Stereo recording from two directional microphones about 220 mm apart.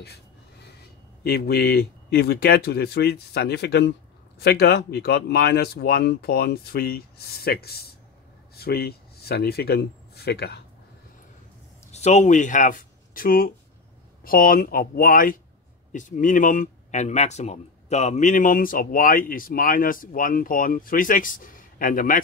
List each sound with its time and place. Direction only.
0.0 s gasp: 50° left (ahead or behind)
1.2 s speech: 45° left (ahead or behind)
11.9 s speech: 30° left (ahead or behind)